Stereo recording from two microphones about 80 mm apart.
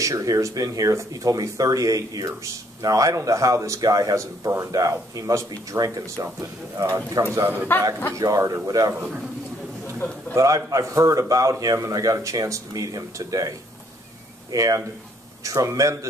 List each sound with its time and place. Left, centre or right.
0.0 s speech: right
7.3 s a man's voice: right
8.1 s speech: right
8.9 s a man's voice: centre
9.9 s a man's voice: centre
10.3 s speech: right